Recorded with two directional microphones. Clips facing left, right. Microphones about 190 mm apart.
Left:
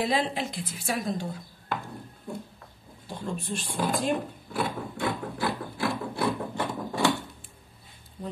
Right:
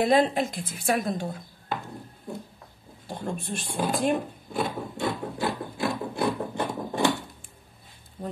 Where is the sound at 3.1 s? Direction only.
55° right (ahead or behind).